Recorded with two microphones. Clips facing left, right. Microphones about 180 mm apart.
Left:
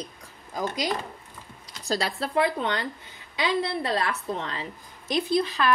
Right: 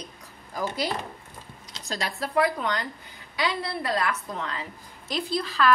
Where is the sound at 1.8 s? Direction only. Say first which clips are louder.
Left 4 dB; 30° left (ahead or behind).